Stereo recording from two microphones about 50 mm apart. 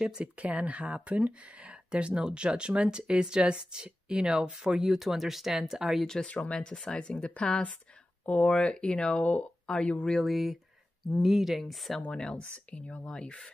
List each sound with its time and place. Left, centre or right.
0.2 s speech: right; by 6.0 s centre
6.0 s speech: centre
6.3 s speech: left
10.1 s speech: centre
12.1 s speech: centre
13.0 s speech: centre